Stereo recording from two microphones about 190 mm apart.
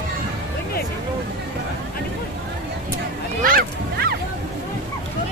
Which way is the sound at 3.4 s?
50° right (ahead or behind).